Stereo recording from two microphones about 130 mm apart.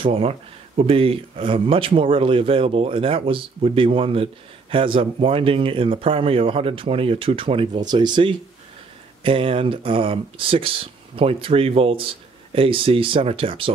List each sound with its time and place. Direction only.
0.0 s speech: 45° right (ahead or behind)